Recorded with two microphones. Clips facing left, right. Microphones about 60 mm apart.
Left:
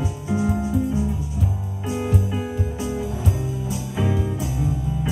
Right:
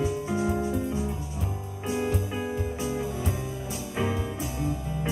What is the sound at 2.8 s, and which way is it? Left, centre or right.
Music, right.